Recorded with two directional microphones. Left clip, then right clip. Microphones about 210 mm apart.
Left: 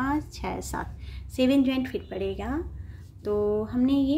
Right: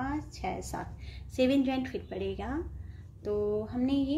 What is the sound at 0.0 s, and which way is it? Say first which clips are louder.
A woman's voice: left 6 dB; 15° left (ahead or behind).